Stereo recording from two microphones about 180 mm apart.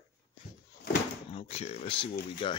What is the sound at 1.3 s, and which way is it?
Speech, 30° left (ahead or behind).